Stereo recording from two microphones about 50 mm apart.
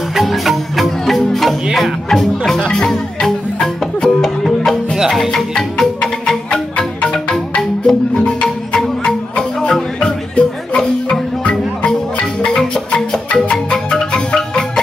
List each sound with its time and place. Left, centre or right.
0.1 s music: centre
4.9 s music: centre
5.3 s music: centre
7.2 s marimba: centre
9.6 s music: centre